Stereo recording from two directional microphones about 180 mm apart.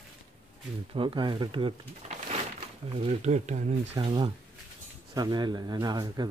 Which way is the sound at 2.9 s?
35° right (ahead or behind).